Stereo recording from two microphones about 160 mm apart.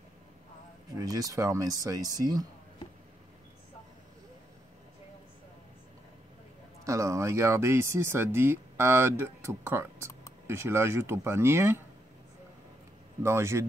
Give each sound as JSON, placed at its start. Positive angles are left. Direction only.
{"t": 0.9, "sound": "speech", "side_deg": -20}
{"t": 6.8, "sound": "speech", "side_deg": -20}
{"t": 13.2, "sound": "speech", "side_deg": -15}